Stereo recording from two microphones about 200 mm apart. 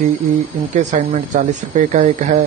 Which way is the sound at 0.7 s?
40° right (ahead or behind).